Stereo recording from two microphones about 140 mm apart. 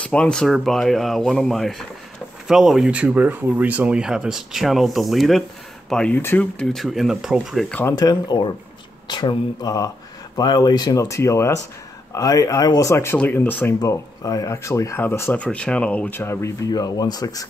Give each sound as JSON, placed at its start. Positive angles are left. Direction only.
{"t": 0.0, "sound": "speech", "side_deg": 10}
{"t": 7.9, "sound": "speech", "side_deg": 30}
{"t": 13.7, "sound": "speech", "side_deg": 25}